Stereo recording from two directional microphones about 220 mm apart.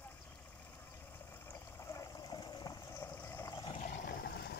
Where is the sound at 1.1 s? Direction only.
10° left (ahead or behind).